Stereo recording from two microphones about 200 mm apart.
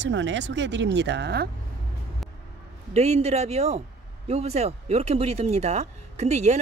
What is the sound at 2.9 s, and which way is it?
Speech, 30° right (ahead or behind).